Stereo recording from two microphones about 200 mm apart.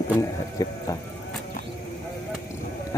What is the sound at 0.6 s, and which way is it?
Speech, 15° left (ahead or behind).